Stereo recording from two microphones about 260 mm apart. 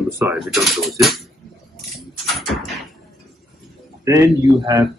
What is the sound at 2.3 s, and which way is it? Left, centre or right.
Door, centre.